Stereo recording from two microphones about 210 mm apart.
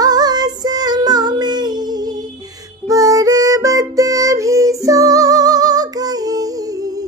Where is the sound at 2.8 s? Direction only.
15° right (ahead or behind).